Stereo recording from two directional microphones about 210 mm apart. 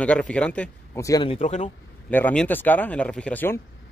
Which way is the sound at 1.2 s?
30° left (ahead or behind).